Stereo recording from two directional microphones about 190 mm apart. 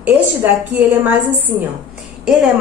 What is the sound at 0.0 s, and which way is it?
A woman's voice, 10° right (ahead or behind).